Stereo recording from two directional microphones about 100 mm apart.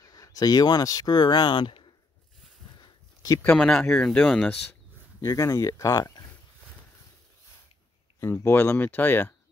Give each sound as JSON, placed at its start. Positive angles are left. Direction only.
{"t": 0.0, "sound": "speech", "side_deg": 35}
{"t": 2.8, "sound": "a sound", "side_deg": 40}
{"t": 3.5, "sound": "speech", "side_deg": 5}
{"t": 5.2, "sound": "speech", "side_deg": 35}
{"t": 8.2, "sound": "speech", "side_deg": 30}